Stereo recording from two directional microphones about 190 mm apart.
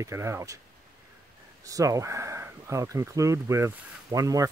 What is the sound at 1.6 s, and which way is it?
Speech, 15° right (ahead or behind).